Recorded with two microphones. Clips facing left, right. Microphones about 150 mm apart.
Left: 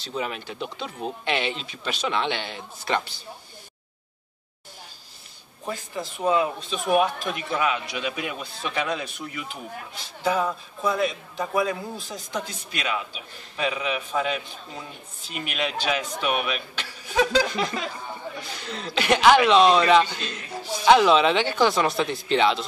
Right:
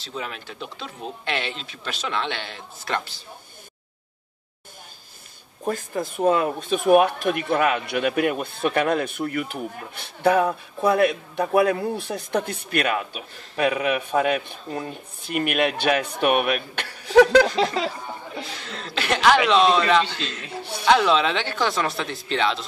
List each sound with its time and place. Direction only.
0.0 s speech: 5° left (ahead or behind)
5.7 s speech: 50° right (ahead or behind)
17.7 s speech: 30° right (ahead or behind)
18.7 s speech: centre (ahead or behind)
20.2 s a man's voice: 15° left (ahead or behind)
20.8 s speech: 5° left (ahead or behind)